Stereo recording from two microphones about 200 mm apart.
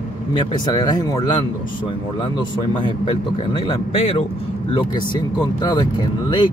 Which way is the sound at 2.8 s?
25° left (ahead or behind).